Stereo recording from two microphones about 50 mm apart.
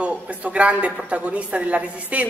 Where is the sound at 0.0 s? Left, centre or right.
Right.